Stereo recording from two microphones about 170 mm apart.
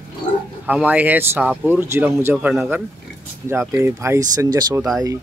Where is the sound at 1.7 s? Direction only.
15° right (ahead or behind).